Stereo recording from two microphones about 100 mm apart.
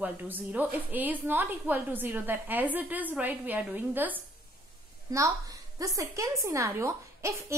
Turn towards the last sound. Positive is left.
turn(degrees=-30)  # may be behind; listen again after turning